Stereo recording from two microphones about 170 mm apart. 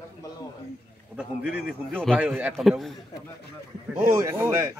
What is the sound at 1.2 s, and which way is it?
Speech, 10° right (ahead or behind).